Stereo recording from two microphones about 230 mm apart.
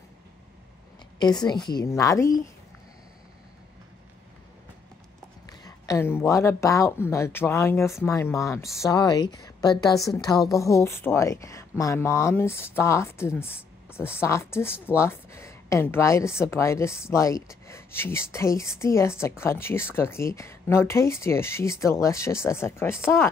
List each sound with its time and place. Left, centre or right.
1.2 s a woman's voice: centre
5.5 s a woman's voice: centre